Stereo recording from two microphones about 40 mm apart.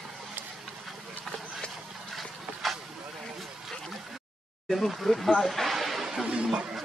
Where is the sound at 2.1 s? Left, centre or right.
Centre.